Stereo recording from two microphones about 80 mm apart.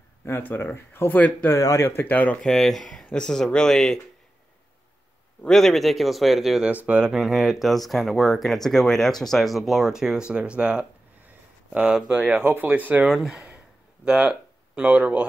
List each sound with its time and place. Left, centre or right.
0.2 s speech: left
1.6 s speech: left
2.4 s speech: centre
5.5 s speech: centre
6.6 s speech: centre
7.2 s speech: centre
13.1 s speech: centre